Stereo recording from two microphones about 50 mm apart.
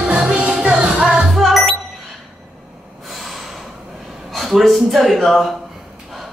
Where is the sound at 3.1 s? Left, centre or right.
Centre.